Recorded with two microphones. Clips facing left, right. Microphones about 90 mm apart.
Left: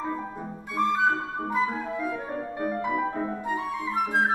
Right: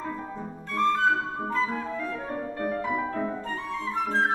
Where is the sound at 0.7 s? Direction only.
15° left (ahead or behind).